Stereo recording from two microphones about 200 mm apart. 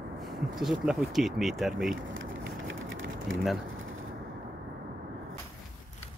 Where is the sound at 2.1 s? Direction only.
70° right (ahead or behind).